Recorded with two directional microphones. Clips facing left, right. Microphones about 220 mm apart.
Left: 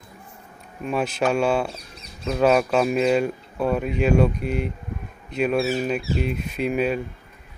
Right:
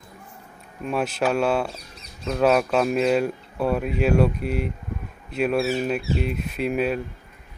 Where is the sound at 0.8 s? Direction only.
Centre (ahead or behind).